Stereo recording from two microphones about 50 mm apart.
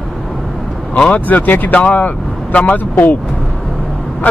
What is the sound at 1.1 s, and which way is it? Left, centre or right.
Speech, left.